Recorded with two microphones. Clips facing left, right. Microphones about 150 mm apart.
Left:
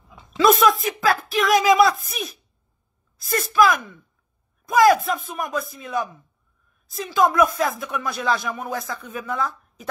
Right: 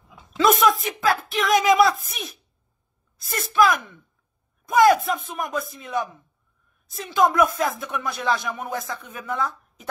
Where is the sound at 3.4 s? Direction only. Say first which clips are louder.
Left 1 dB; 20° right (ahead or behind).